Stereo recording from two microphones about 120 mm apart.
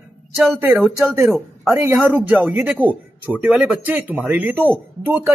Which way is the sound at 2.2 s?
15° right (ahead or behind).